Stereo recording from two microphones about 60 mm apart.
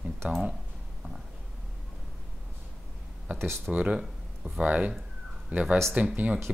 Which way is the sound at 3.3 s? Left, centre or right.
Right.